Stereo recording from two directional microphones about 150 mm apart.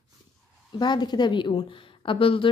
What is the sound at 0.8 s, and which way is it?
Speech, 30° left (ahead or behind).